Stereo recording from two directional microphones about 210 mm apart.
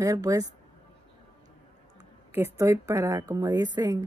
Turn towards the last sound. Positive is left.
turn(degrees=-20)  # may be behind; listen again after turning